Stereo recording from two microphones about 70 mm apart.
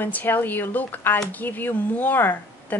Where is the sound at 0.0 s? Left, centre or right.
Left.